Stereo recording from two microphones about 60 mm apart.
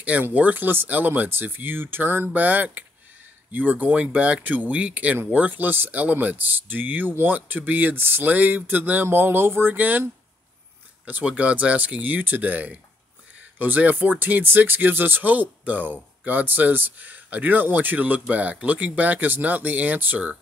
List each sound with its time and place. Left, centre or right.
0.2 s speech: right
11.1 s speech: right